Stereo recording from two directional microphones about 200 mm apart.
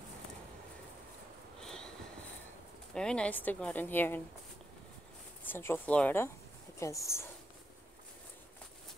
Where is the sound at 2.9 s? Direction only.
5° left (ahead or behind).